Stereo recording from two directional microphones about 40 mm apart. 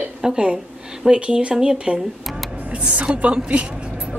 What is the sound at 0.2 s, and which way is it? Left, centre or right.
Speech, centre.